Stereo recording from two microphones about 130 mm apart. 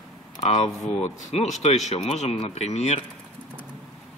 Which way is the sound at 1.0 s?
60° left (ahead or behind).